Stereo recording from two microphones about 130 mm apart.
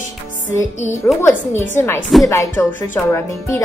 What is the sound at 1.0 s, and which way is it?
Speech, 20° left (ahead or behind).